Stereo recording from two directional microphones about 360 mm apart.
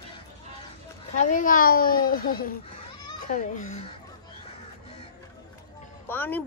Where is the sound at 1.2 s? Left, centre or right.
Left.